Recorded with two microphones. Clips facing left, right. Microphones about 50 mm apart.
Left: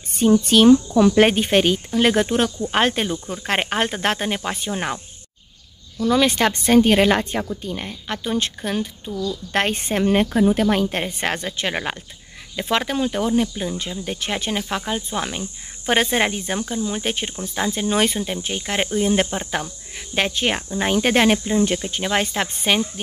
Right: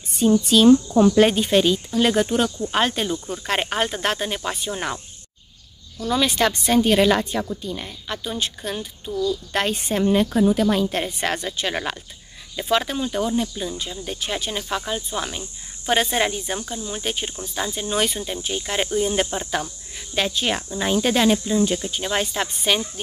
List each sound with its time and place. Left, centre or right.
0.2 s a woman's voice: left
5.9 s a woman's voice: left
11.7 s speech: left
12.5 s a woman's voice: left
16.8 s a woman's voice: left